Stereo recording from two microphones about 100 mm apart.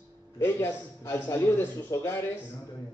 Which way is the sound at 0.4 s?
25° left (ahead or behind).